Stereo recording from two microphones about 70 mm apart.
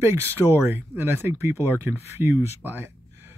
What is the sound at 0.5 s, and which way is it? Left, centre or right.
Speech, right.